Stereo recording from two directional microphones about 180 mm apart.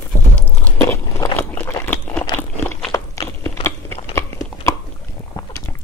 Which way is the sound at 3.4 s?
15° left (ahead or behind).